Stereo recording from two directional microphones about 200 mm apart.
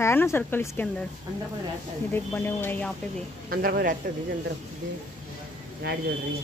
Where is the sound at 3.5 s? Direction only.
50° right (ahead or behind).